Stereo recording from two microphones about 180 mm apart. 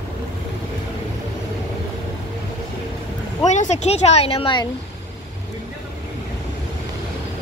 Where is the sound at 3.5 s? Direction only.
40° left (ahead or behind).